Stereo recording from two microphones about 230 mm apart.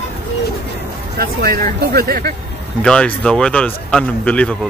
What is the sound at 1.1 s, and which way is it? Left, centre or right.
Speech, right.